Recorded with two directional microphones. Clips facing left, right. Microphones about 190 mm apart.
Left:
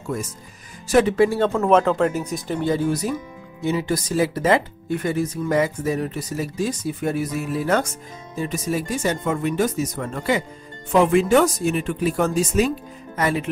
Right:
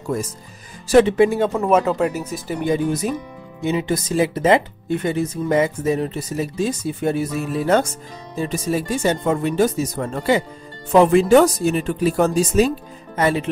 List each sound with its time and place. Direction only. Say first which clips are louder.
0.8 s speech: right 4 dB; 30° right (ahead or behind)
1.1 s speech: right 2 dB; 20° right (ahead or behind)
1.5 s speech: even; 5° right (ahead or behind); by 13.5 s 30° right (ahead or behind)